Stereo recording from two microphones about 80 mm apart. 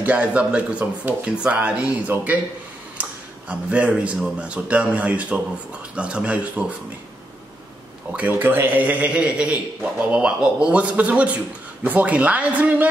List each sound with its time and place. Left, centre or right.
0.0 s a man's voice: centre
3.0 s a sound: centre
4.0 s a man's voice: centre
8.1 s a man's voice: right